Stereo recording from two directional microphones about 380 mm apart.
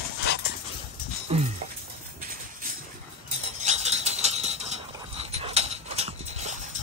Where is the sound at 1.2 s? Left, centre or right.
Centre.